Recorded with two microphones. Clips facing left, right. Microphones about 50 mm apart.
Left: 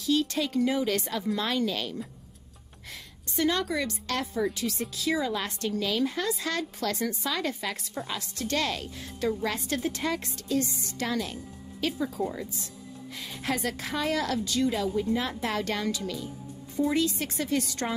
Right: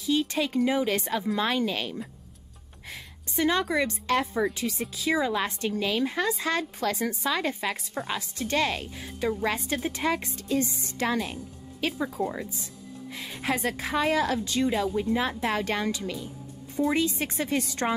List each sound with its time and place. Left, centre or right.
0.0 s a woman's voice: right
13.1 s music: centre
13.6 s a woman's voice: right
14.4 s a woman's voice: right